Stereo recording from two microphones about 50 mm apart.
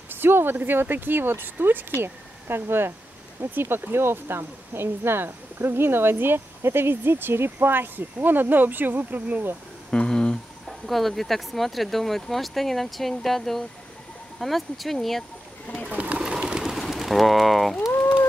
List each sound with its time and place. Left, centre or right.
0.1 s speech: right
9.8 s a sound: centre
10.9 s speech: centre
15.9 s pigeon: right
16.2 s bird: centre
16.7 s pigeon: centre